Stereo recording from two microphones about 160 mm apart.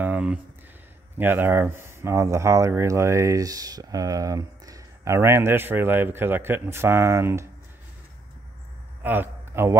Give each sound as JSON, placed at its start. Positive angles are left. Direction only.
{"t": 0.0, "sound": "a sound", "side_deg": -10}
{"t": 1.1, "sound": "speech", "side_deg": -15}
{"t": 9.0, "sound": "a man's voice", "side_deg": -10}